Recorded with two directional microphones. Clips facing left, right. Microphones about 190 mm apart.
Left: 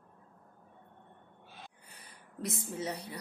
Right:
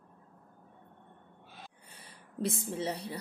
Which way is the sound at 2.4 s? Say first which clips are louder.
Right 4 dB; 30° right (ahead or behind).